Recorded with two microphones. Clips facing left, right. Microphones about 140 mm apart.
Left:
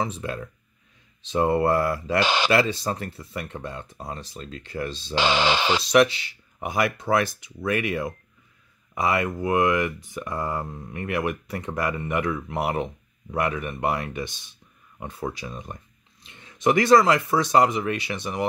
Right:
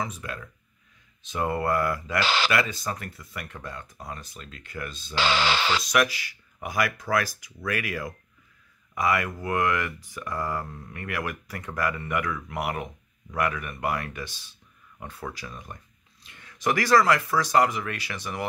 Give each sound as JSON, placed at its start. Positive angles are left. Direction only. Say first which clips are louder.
{"t": 0.0, "sound": "speech", "louder": "left 5 dB", "side_deg": 30}
{"t": 2.6, "sound": "speech", "louder": "left 5 dB", "side_deg": 30}
{"t": 5.1, "sound": "speech", "louder": "left 3 dB", "side_deg": 20}